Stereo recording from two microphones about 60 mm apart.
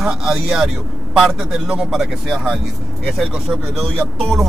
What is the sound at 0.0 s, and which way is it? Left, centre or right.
Speech, centre.